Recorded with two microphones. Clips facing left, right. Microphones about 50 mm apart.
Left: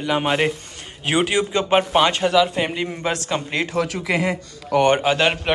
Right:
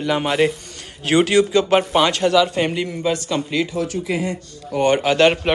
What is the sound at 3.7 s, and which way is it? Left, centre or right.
Speech, left.